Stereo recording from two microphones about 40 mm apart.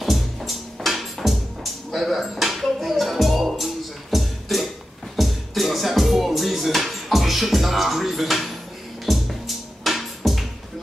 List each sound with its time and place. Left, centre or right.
0.0 s music: centre